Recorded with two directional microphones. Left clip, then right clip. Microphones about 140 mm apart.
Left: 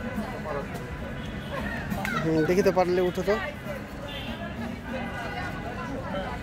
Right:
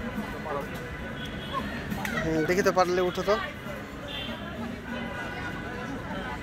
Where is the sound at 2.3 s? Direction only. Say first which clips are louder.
Left 2 dB; 40° left (ahead or behind).